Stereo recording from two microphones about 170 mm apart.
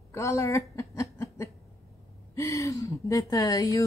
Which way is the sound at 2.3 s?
15° left (ahead or behind).